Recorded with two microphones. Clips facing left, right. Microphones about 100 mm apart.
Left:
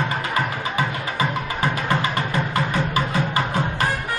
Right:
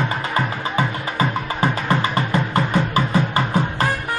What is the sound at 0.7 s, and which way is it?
Music, 30° right (ahead or behind).